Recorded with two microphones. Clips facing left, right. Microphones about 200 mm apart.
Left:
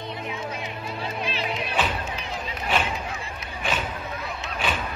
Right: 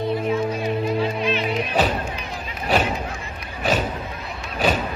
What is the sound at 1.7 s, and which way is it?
Music, 40° right (ahead or behind).